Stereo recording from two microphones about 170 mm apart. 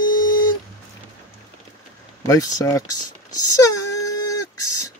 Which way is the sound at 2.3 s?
20° left (ahead or behind).